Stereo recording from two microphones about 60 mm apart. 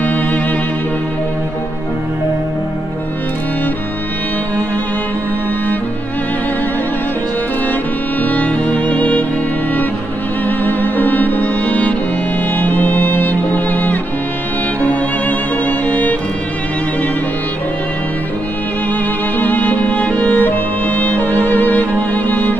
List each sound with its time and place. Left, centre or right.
8.2 s music: left
10.4 s music: left
19.3 s music: left